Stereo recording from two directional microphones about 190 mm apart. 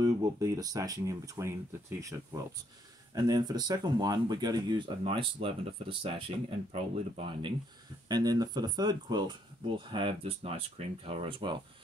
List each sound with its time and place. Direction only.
0.0 s speech: 20° right (ahead or behind)
8.1 s speech: 20° right (ahead or behind)